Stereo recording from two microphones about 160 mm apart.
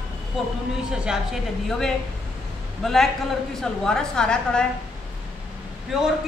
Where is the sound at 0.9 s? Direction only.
5° right (ahead or behind).